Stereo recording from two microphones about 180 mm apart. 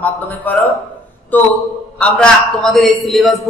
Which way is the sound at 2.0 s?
5° left (ahead or behind).